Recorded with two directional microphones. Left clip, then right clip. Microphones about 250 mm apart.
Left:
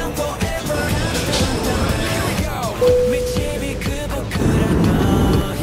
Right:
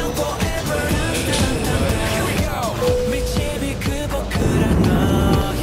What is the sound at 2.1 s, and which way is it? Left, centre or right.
Music, centre.